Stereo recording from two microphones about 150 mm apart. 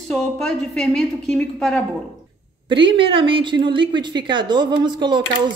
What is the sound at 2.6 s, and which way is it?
A woman's voice, 35° right (ahead or behind).